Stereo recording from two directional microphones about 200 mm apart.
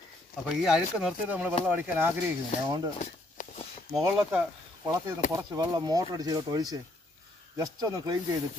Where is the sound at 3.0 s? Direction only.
35° left (ahead or behind).